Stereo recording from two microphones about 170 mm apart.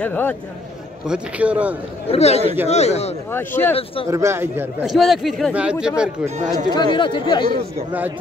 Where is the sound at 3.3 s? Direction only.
10° left (ahead or behind).